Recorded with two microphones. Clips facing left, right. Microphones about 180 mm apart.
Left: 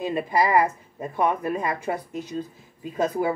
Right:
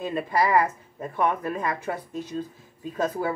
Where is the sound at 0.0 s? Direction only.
15° left (ahead or behind).